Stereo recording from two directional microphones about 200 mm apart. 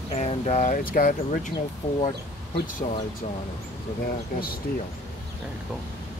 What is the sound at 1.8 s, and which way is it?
Speech, 35° left (ahead or behind).